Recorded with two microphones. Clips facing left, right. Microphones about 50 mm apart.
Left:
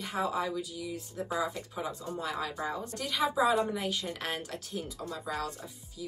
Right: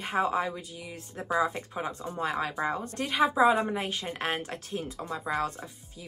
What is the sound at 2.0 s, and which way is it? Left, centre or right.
Speech, right.